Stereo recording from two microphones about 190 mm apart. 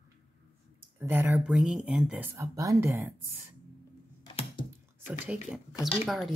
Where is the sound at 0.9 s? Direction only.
10° right (ahead or behind).